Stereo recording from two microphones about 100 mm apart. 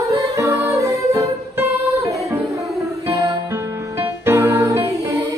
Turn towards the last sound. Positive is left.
turn(degrees=-30)  # may be behind; listen again after turning